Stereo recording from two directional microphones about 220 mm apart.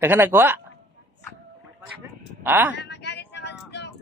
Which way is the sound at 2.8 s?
50° left (ahead or behind).